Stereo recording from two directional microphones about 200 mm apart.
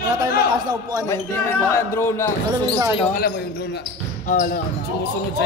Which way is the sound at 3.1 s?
50° left (ahead or behind).